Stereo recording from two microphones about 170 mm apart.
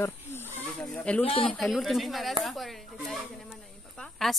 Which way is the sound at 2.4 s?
Centre (ahead or behind).